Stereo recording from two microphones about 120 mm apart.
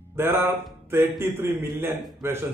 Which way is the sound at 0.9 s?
20° right (ahead or behind).